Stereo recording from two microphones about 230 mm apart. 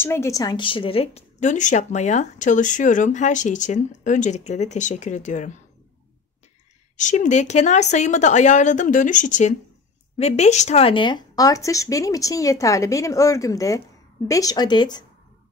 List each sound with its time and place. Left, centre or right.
0.0 s a woman's voice: centre; by 5.5 s left
7.0 s a woman's voice: left